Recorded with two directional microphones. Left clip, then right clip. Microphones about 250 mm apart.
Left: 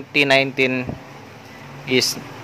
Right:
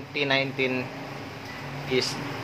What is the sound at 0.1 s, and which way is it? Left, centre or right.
Speech, left.